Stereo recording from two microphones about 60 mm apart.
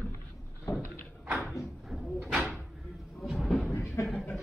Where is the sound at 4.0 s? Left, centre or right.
Left.